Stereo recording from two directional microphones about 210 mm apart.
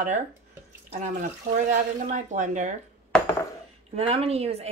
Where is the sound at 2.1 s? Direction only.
35° right (ahead or behind).